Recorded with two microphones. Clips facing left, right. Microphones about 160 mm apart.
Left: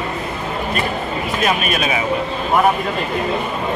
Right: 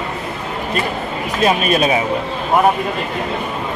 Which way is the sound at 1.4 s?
35° right (ahead or behind).